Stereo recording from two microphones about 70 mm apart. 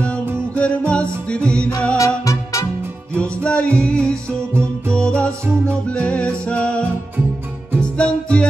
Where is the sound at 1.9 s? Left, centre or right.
Left.